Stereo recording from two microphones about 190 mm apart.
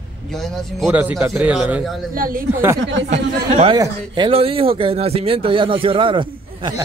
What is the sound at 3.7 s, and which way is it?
Speech, 20° right (ahead or behind).